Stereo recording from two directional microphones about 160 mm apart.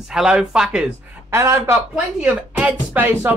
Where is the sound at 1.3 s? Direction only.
15° right (ahead or behind).